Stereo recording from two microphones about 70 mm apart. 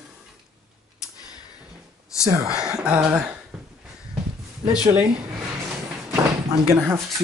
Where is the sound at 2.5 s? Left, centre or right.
Centre.